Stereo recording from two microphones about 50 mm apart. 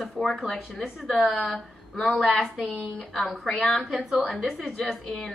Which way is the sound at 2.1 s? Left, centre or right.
Centre.